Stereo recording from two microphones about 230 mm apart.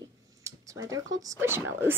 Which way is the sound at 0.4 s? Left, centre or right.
Centre.